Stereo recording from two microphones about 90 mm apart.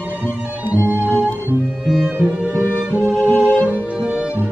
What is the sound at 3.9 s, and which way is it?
Music, 15° right (ahead or behind).